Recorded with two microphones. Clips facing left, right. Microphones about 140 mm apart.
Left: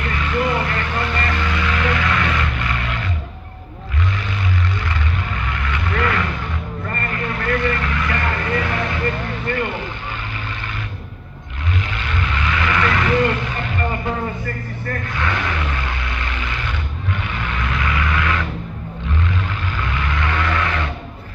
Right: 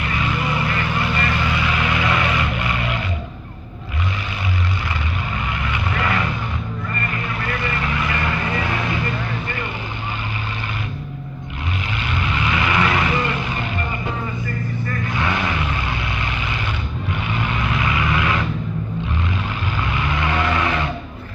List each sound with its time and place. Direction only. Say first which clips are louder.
0.0 s vehicle: left 2 dB; 10° right (ahead or behind)
5.5 s vehicle: left 2 dB; 10° right (ahead or behind)
6.9 s vehicle: left 3 dB; 50° left (ahead or behind)
7.6 s vehicle: left 2 dB; 10° right (ahead or behind)
9.0 s vehicle: left 2 dB; 55° left (ahead or behind)
12.0 s vehicle: right 1 dB; 15° right (ahead or behind)
14.2 s vehicle: left 1 dB; 55° left (ahead or behind)
15.0 s a sound: right 2 dB; 15° right (ahead or behind)
17.1 s vehicle: right 2 dB; 15° right (ahead or behind)
19.8 s vehicle: right 1 dB; 15° right (ahead or behind)